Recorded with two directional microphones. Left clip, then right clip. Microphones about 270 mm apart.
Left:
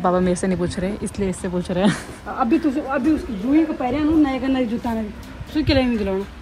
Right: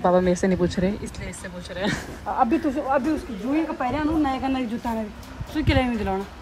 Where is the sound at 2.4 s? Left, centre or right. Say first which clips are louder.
Left 2 dB; left.